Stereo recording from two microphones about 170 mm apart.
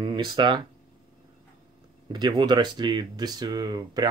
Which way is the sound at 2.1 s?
25° right (ahead or behind).